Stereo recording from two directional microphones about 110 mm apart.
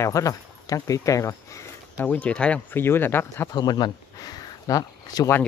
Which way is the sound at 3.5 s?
40° left (ahead or behind).